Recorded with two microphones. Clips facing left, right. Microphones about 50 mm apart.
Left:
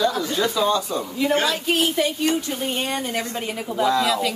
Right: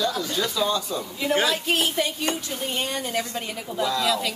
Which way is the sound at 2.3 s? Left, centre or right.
Centre.